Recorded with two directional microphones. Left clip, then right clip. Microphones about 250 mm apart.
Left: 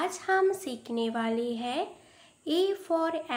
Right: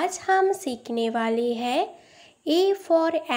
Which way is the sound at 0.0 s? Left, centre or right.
Right.